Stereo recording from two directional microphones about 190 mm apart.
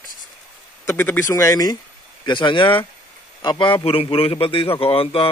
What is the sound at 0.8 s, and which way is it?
A man's voice, 10° left (ahead or behind).